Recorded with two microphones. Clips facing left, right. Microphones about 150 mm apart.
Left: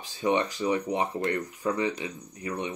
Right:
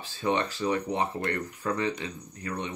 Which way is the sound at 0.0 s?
15° left (ahead or behind).